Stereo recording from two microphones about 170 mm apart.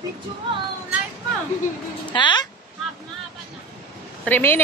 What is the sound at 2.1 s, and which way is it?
Speech, 25° left (ahead or behind).